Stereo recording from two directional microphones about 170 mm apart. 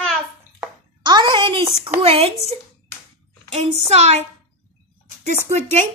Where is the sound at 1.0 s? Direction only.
25° right (ahead or behind).